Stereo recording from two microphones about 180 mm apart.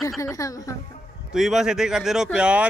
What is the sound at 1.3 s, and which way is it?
Speech, centre (ahead or behind).